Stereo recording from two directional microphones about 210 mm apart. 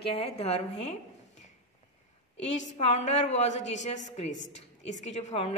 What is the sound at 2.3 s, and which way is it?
A woman's voice, 35° left (ahead or behind).